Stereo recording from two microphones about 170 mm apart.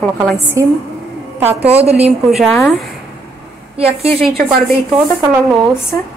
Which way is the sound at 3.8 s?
35° right (ahead or behind).